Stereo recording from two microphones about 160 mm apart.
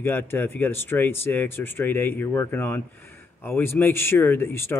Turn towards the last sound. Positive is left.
turn(degrees=15)  # may be behind; listen again after turning